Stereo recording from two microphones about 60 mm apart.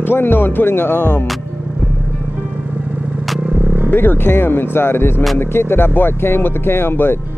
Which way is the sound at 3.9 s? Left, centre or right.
Left.